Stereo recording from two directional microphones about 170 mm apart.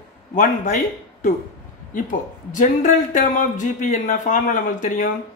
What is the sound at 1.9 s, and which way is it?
Speech, 50° left (ahead or behind).